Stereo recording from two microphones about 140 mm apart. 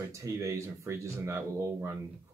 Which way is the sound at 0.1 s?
20° right (ahead or behind).